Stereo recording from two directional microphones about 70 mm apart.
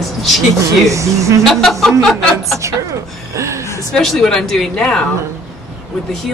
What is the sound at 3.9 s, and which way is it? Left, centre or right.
Speech, centre.